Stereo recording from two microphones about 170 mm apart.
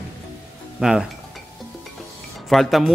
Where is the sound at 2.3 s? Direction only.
Centre (ahead or behind).